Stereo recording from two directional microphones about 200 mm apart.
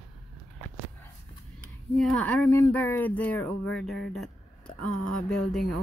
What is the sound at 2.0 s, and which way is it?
Speech, 5° left (ahead or behind).